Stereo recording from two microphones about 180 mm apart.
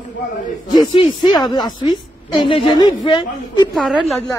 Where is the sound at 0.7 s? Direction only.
25° left (ahead or behind).